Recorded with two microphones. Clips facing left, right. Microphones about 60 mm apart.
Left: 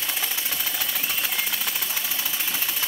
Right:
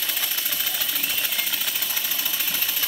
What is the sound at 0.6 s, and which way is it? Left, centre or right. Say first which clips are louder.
Engine: even; centre.